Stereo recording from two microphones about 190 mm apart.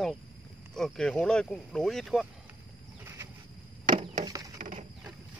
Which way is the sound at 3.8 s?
45° right (ahead or behind).